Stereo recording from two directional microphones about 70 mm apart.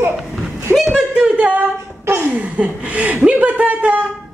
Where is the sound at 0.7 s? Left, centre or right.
Centre.